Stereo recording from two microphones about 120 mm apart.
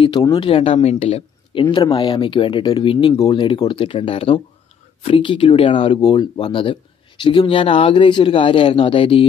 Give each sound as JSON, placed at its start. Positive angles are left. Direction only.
{"t": 0.0, "sound": "a man's voice", "side_deg": 40}